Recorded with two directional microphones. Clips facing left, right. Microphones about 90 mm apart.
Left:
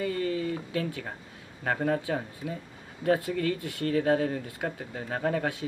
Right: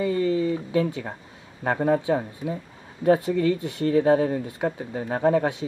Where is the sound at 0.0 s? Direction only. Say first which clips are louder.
Right 7 dB; 25° right (ahead or behind).